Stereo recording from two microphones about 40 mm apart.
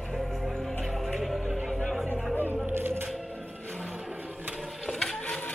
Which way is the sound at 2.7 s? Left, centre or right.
Right.